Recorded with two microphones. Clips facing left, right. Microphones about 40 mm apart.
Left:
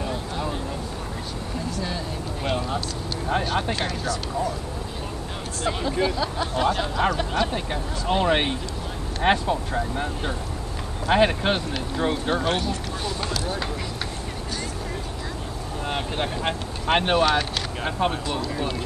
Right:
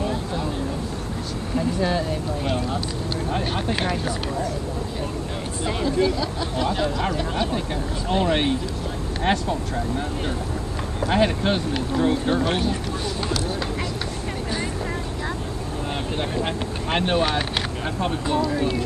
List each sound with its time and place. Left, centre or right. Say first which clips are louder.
0.0 s a sound: right 3 dB; centre
1.8 s speech: right 8 dB; centre
2.4 s speech: left 2 dB; centre
3.7 s speech: right 2 dB; centre
5.9 s speech: right 4 dB; centre
11.1 s speech: left 1 dB; centre
16.4 s speech: left 1 dB; centre
17.3 s speech: left 1 dB; centre
17.8 s speech: left 3 dB; centre
18.4 s speech: right 5 dB; centre